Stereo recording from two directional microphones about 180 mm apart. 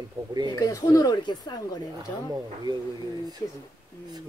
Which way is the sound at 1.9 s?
20° right (ahead or behind).